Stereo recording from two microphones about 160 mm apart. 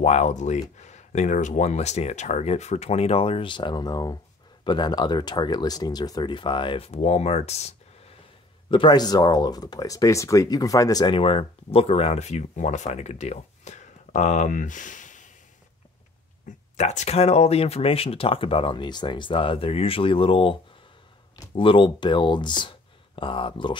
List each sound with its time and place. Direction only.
0.0 s speech: 45° left (ahead or behind)
8.6 s speech: 30° left (ahead or behind); by 15.3 s 50° left (ahead or behind)
16.4 s speech: 45° left (ahead or behind)
21.5 s speech: 30° left (ahead or behind)